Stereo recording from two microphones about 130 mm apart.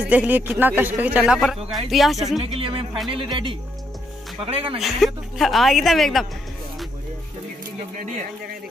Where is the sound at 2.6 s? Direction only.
45° right (ahead or behind).